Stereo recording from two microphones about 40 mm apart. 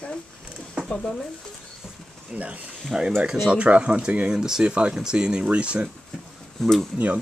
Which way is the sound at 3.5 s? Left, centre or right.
Right.